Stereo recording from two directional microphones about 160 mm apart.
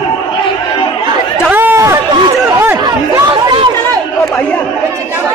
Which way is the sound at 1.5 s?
15° right (ahead or behind).